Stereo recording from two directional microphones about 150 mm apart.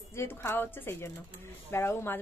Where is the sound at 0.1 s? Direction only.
15° left (ahead or behind).